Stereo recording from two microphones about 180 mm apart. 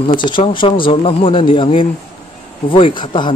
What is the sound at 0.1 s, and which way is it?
Speech, 25° left (ahead or behind).